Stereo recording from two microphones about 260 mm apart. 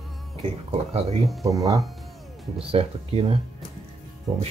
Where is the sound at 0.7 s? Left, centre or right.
Right.